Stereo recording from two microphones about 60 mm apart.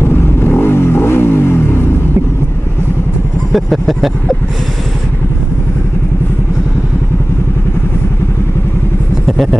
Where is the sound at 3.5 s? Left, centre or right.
Centre.